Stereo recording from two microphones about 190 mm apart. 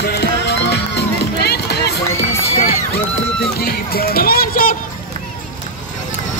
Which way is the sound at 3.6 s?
50° left (ahead or behind).